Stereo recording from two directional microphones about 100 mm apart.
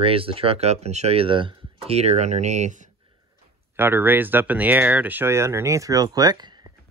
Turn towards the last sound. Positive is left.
turn(degrees=-45)  # may be behind; listen again after turning